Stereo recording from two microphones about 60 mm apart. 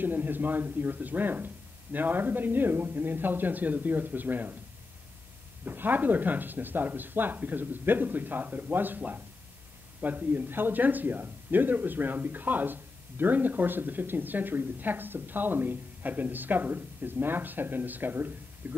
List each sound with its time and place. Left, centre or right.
0.0 s speech: right
5.7 s speech: right